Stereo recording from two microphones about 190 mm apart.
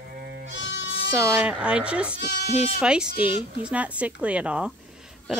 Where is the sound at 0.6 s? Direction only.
75° left (ahead or behind).